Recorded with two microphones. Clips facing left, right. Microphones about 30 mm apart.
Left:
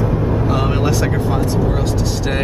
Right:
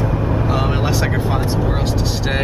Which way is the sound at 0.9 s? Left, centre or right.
Right.